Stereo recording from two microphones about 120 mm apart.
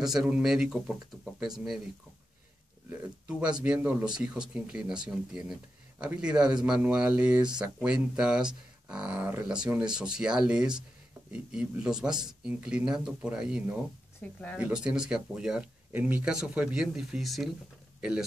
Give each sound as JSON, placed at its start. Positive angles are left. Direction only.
{"t": 0.0, "sound": "speech", "side_deg": -5}
{"t": 2.9, "sound": "speech", "side_deg": -10}
{"t": 14.2, "sound": "speech", "side_deg": 10}
{"t": 14.6, "sound": "speech", "side_deg": -10}